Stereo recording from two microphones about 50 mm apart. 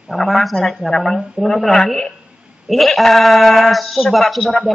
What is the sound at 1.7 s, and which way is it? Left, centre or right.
Speech, centre.